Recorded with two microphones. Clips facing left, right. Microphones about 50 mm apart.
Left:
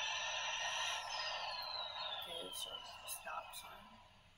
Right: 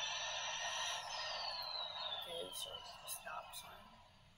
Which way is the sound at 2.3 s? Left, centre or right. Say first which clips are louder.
Right 1 dB; centre.